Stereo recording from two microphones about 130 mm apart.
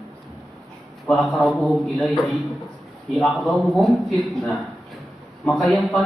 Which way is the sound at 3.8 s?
Centre (ahead or behind).